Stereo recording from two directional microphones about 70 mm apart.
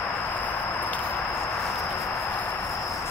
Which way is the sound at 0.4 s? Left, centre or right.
Left.